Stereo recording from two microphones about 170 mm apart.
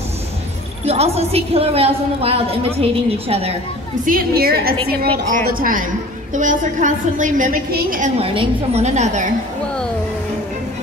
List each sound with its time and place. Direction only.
0.8 s a woman's voice: 40° right (ahead or behind)
4.0 s a woman's voice: 55° right (ahead or behind)
5.5 s a woman's voice: 55° right (ahead or behind)
8.2 s a woman's voice: 35° right (ahead or behind)